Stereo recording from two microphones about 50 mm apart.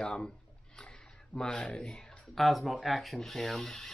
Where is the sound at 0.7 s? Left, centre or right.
Centre.